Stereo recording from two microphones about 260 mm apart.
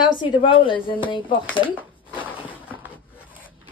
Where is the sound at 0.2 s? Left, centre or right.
Centre.